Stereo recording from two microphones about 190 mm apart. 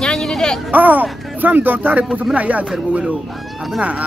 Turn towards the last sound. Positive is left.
turn(degrees=-5)  # may be behind; listen again after turning